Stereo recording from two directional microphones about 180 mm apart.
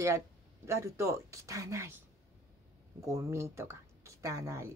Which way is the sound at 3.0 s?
15° right (ahead or behind).